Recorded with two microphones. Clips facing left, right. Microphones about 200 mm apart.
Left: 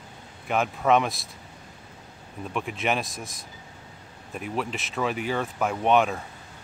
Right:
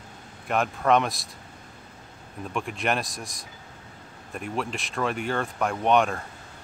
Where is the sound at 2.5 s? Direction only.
Centre (ahead or behind).